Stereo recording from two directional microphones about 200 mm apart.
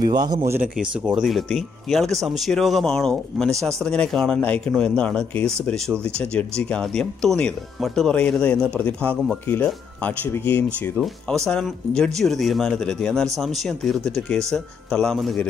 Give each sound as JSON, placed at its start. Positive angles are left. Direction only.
{"t": 0.1, "sound": "speech", "side_deg": -20}
{"t": 0.5, "sound": "speech", "side_deg": -10}